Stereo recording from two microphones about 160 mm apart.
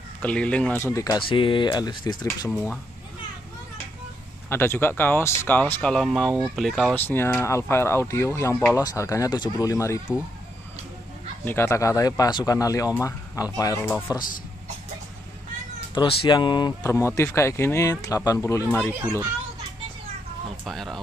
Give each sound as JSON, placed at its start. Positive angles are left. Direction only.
{"t": 0.2, "sound": "speech", "side_deg": 10}
{"t": 2.5, "sound": "speech", "side_deg": 5}
{"t": 4.5, "sound": "speech", "side_deg": 15}
{"t": 7.1, "sound": "speech", "side_deg": 15}
{"t": 11.4, "sound": "speech", "side_deg": 15}
{"t": 15.9, "sound": "speech", "side_deg": 35}
{"t": 16.9, "sound": "speech", "side_deg": 15}
{"t": 20.6, "sound": "speech", "side_deg": 0}